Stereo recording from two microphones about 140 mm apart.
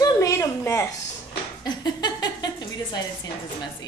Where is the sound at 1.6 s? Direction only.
30° left (ahead or behind).